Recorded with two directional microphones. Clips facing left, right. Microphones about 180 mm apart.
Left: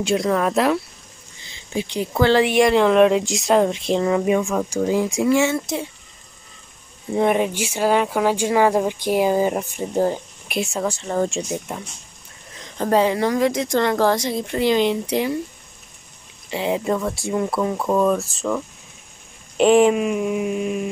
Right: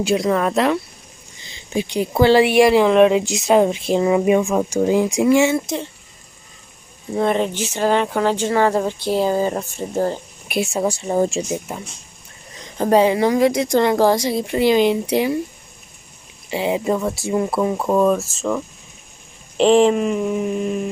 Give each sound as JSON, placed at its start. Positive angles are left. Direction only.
{"t": 0.0, "sound": "speech", "side_deg": -5}
{"t": 1.8, "sound": "speech", "side_deg": -15}
{"t": 7.2, "sound": "speech", "side_deg": 10}
{"t": 10.5, "sound": "speech", "side_deg": -10}
{"t": 12.7, "sound": "speech", "side_deg": -15}
{"t": 16.4, "sound": "speech", "side_deg": -5}